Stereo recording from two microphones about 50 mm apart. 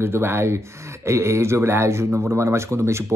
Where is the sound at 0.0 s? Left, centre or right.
Right.